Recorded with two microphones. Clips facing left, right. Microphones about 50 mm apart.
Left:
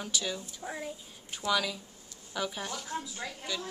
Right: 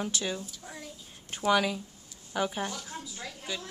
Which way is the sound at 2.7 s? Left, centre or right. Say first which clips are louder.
Left 3 dB; centre.